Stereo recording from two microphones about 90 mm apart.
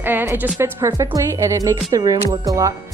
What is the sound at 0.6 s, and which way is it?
Speech, 35° right (ahead or behind).